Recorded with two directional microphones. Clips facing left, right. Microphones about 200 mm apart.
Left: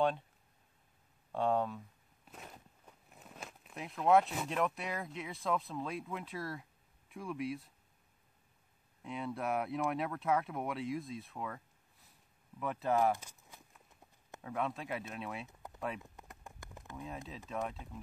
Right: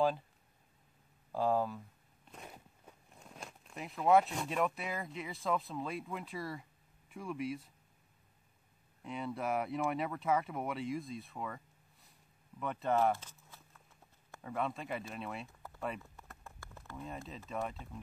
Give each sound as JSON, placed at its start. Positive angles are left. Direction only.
{"t": 1.3, "sound": "speech", "side_deg": 0}
{"t": 2.2, "sound": "a sound", "side_deg": 5}
{"t": 2.5, "sound": "a sound", "side_deg": -10}
{"t": 3.1, "sound": "speech", "side_deg": 5}
{"t": 9.0, "sound": "speech", "side_deg": 0}
{"t": 13.2, "sound": "walk", "side_deg": 15}
{"t": 14.4, "sound": "speech", "side_deg": 0}
{"t": 16.0, "sound": "a sound", "side_deg": 15}
{"t": 16.9, "sound": "speech", "side_deg": 0}